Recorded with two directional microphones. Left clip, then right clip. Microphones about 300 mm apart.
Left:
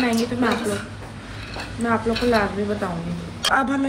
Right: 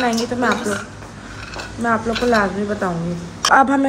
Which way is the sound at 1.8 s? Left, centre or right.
Right.